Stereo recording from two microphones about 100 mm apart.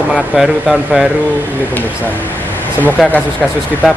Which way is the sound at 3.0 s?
Centre (ahead or behind).